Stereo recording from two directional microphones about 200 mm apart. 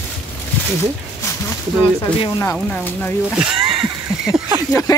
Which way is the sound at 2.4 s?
10° left (ahead or behind).